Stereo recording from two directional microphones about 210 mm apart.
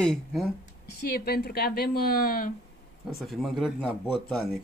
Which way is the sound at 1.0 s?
45° left (ahead or behind).